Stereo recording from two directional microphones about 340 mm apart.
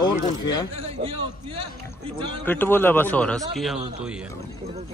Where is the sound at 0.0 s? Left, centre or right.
Centre.